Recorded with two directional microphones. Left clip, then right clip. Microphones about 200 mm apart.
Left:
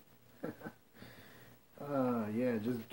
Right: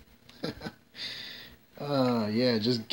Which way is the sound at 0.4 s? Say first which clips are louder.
Right 7 dB; 50° right (ahead or behind).